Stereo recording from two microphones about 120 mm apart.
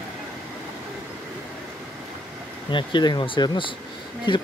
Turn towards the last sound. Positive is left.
turn(degrees=45)  # may be behind; listen again after turning